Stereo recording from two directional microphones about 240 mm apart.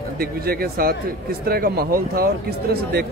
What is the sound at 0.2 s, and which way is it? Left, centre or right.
Speech, right.